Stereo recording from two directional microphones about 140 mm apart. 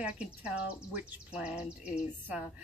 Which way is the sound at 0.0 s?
10° right (ahead or behind).